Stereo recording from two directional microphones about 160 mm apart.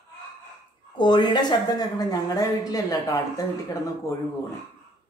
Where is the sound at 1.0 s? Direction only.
30° left (ahead or behind).